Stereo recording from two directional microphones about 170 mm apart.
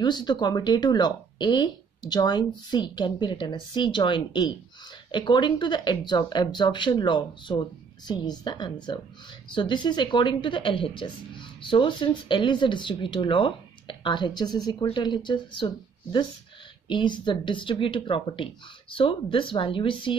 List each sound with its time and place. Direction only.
0.0 s speech: 25° left (ahead or behind)